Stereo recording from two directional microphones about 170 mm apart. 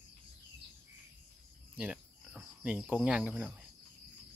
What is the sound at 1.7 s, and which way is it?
Cricket, 10° right (ahead or behind).